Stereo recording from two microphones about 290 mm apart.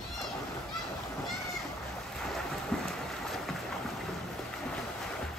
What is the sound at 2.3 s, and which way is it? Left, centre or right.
Boat, centre.